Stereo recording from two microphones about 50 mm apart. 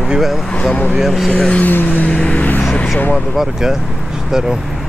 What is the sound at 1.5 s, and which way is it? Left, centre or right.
Vehicle, left.